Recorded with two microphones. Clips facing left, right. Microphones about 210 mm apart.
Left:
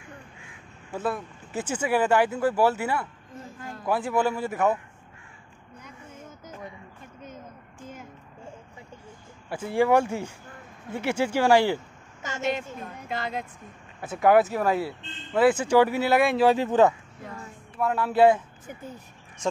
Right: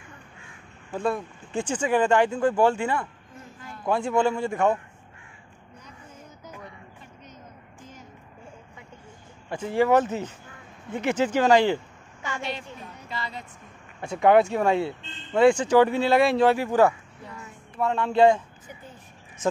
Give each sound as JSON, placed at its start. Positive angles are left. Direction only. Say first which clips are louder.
{"t": 1.0, "sound": "speech", "louder": "right 3 dB", "side_deg": 5}
{"t": 9.5, "sound": "speech", "louder": "right 1 dB", "side_deg": 10}
{"t": 12.2, "sound": "a woman's voice", "louder": "left 4 dB", "side_deg": 45}
{"t": 14.0, "sound": "speech", "louder": "right 1 dB", "side_deg": 5}
{"t": 16.4, "sound": "speech", "louder": "even", "side_deg": 20}
{"t": 17.7, "sound": "speech", "louder": "right 1 dB", "side_deg": 5}